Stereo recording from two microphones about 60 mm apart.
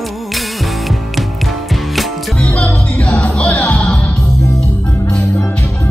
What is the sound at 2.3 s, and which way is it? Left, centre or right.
Music, centre.